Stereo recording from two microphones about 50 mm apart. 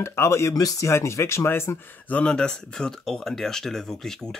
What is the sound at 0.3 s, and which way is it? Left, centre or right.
Speech, left.